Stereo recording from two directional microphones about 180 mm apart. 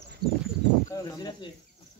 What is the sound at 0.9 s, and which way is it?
Speech, 25° left (ahead or behind).